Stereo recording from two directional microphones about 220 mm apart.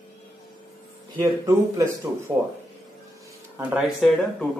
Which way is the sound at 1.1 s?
10° right (ahead or behind).